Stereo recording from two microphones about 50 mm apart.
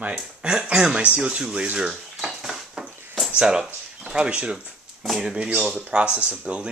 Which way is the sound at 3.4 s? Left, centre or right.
Centre.